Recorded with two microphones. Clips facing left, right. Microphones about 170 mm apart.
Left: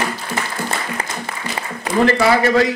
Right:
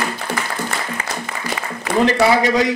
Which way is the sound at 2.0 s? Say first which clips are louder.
Even; 15° right (ahead or behind).